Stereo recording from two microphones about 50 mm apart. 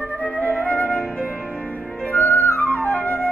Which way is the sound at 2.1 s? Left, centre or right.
Left.